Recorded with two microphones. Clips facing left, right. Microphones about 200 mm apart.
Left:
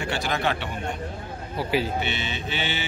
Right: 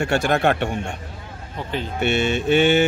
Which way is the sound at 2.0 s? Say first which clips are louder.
Right 11 dB; 50° right (ahead or behind).